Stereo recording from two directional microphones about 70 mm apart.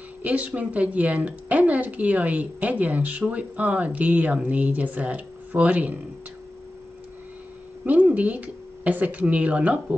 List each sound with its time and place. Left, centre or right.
0.2 s a woman's voice: right
7.8 s speech: right